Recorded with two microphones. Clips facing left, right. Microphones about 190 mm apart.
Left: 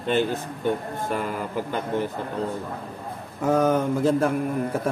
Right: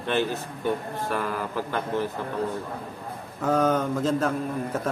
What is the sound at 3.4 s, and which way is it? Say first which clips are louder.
Speech: left 2 dB; 10° left (ahead or behind).